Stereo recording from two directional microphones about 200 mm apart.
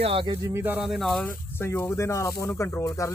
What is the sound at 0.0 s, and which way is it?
Speech, 25° right (ahead or behind).